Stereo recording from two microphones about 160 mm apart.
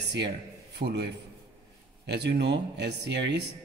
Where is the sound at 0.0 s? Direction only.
90° right.